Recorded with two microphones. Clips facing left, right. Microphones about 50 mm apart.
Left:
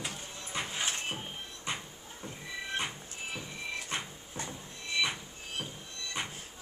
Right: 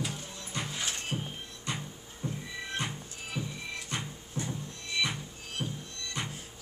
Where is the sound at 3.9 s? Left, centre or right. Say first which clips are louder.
Right 1 dB; left.